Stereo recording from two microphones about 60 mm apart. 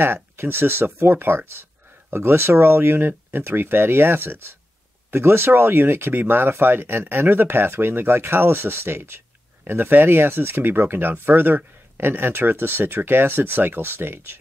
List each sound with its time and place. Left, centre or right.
0.0 s speech: right